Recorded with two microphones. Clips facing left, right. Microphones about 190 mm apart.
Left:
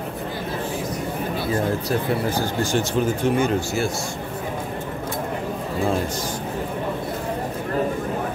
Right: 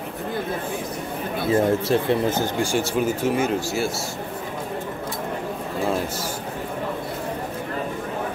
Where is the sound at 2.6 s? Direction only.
10° right (ahead or behind).